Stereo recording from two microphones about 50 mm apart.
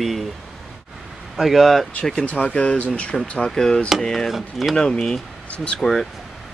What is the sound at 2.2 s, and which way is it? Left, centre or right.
Speech, left.